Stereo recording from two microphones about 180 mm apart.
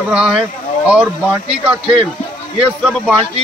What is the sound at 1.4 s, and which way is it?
Speech, 5° right (ahead or behind).